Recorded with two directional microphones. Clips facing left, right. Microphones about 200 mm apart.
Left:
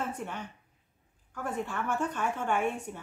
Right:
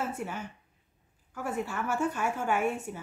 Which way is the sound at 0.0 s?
5° right (ahead or behind).